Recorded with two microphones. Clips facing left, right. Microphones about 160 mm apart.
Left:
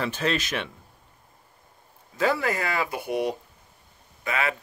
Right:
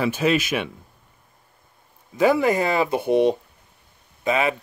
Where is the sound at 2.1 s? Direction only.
15° right (ahead or behind).